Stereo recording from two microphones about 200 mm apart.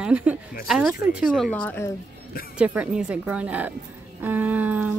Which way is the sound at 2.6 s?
5° right (ahead or behind).